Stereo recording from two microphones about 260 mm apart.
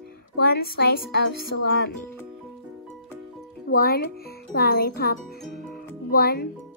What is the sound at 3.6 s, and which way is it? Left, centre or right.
Speech, left.